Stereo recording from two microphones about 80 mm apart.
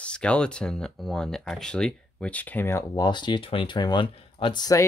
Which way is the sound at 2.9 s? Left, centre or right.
Left.